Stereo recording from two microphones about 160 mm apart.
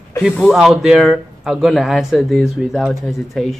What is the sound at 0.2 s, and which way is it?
Speech, centre (ahead or behind).